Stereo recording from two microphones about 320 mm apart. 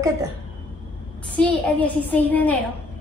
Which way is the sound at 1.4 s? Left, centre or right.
Centre.